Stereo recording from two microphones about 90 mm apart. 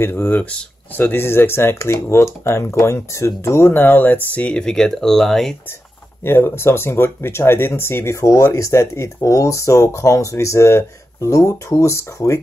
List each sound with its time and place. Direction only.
0.0 s speech: 25° left (ahead or behind); by 5.6 s 5° left (ahead or behind)
6.2 s speech: 25° left (ahead or behind)